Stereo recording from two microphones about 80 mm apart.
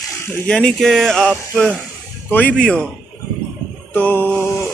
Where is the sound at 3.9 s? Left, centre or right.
Left.